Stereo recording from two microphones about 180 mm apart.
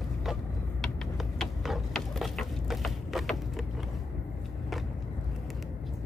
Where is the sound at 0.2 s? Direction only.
Centre (ahead or behind).